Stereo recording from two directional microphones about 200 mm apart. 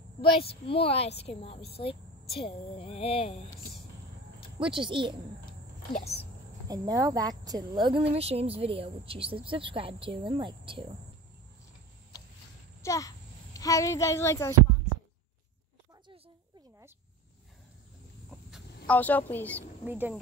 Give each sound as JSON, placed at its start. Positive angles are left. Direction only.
{"t": 0.2, "sound": "a woman's voice", "side_deg": 25}
{"t": 4.6, "sound": "speech", "side_deg": -25}
{"t": 5.9, "sound": "speech", "side_deg": 30}
{"t": 6.7, "sound": "speech", "side_deg": -15}
{"t": 12.8, "sound": "a child's voice", "side_deg": 15}
{"t": 18.5, "sound": "a woman's voice", "side_deg": 5}
{"t": 19.8, "sound": "speech", "side_deg": -10}